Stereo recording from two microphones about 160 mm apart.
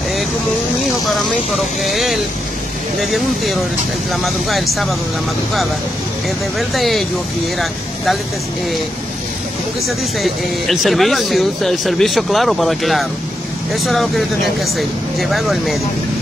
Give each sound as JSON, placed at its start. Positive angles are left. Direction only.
{"t": 0.8, "sound": "speech", "side_deg": 0}
{"t": 6.7, "sound": "speech", "side_deg": 0}
{"t": 9.8, "sound": "speech", "side_deg": 0}